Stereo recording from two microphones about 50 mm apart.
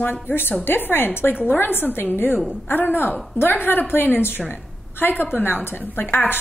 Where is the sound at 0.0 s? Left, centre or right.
Left.